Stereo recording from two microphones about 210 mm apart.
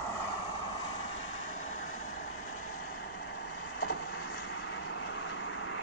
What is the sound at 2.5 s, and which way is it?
Vehicle, 90° left.